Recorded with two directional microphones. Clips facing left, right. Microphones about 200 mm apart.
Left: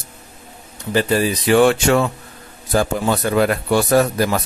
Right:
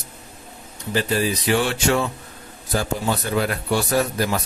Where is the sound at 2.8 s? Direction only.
60° left (ahead or behind).